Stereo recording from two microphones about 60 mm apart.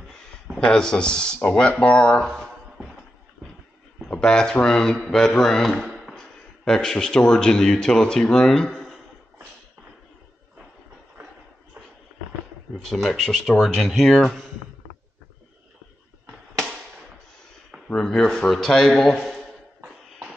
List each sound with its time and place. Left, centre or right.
0.6 s speech: centre
2.2 s speech: centre
4.1 s speech: centre
5.8 s a sound: centre
6.1 s speech: centre
12.7 s speech: centre
17.8 s speech: centre